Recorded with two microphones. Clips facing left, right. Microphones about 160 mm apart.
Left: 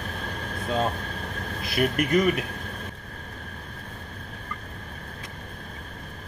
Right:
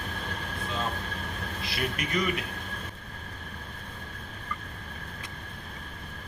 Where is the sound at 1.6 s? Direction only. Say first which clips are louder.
Left 9 dB; 50° left (ahead or behind).